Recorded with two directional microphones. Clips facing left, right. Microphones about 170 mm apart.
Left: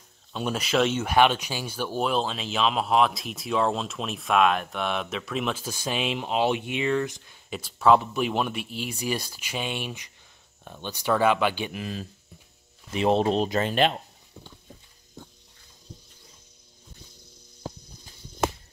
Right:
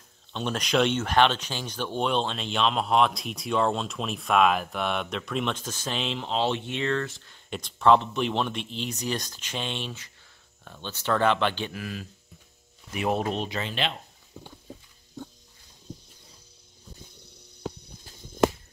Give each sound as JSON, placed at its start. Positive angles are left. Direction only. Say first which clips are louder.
{"t": 0.3, "sound": "speech", "louder": "left 1 dB", "side_deg": 5}
{"t": 11.8, "sound": "speech", "louder": "left 2 dB", "side_deg": 30}